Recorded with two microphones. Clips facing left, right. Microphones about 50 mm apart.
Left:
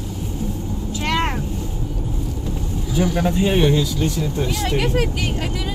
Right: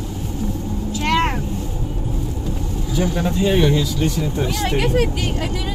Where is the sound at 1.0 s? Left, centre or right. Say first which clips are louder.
Right 3 dB; right.